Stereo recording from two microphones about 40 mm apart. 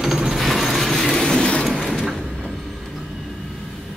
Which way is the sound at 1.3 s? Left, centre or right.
Left.